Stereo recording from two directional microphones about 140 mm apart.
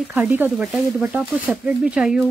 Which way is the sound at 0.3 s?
15° right (ahead or behind).